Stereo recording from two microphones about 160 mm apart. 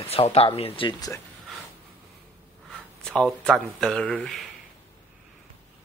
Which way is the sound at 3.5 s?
Centre (ahead or behind).